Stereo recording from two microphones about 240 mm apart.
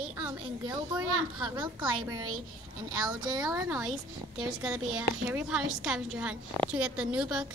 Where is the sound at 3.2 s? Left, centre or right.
Centre.